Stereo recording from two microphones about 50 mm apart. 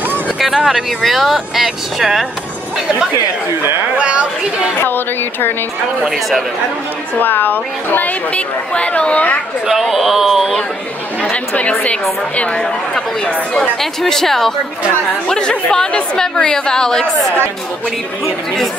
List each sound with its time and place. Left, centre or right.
0.7 s speech: centre
3.9 s speech: right
4.7 s speech: left
7.2 s a woman's voice: left
8.3 s a woman's voice: left
9.7 s speech: centre
11.2 s a woman's voice: left
13.7 s a woman's voice: centre